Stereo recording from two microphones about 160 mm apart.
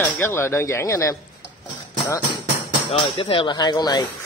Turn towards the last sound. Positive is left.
turn(degrees=25)  # may be behind; listen again after turning